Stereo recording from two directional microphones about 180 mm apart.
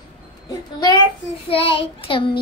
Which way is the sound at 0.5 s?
25° left (ahead or behind).